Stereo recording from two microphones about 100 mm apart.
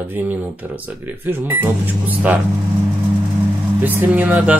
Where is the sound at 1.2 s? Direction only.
15° right (ahead or behind).